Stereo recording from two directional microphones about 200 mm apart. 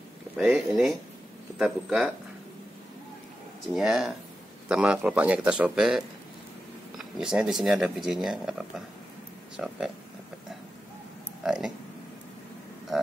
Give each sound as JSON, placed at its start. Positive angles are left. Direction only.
{"t": 0.4, "sound": "speech", "side_deg": 0}
{"t": 3.7, "sound": "speech", "side_deg": 0}
{"t": 11.4, "sound": "speech", "side_deg": -5}